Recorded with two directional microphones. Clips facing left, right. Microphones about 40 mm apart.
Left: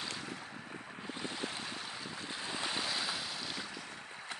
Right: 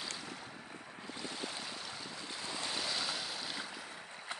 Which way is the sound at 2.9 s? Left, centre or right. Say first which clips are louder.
Left 1 dB; centre.